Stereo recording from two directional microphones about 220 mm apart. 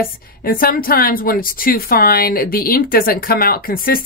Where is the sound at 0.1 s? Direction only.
40° left (ahead or behind).